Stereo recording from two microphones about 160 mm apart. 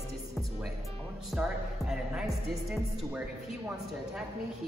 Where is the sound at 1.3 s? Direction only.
5° right (ahead or behind).